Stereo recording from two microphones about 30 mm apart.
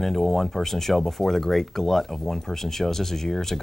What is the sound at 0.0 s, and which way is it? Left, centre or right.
Speech, centre.